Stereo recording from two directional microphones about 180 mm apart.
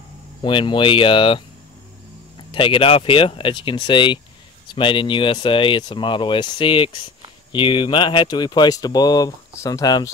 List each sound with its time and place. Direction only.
0.4 s speech: 25° left (ahead or behind)
2.5 s speech: 30° left (ahead or behind)